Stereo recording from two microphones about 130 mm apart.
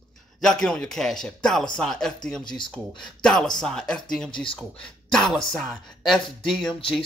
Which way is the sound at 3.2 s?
5° left (ahead or behind).